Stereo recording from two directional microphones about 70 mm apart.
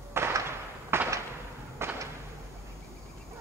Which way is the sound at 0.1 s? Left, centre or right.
Right.